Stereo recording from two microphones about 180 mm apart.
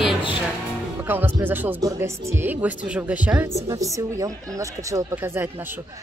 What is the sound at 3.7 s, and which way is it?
Speech, 20° right (ahead or behind).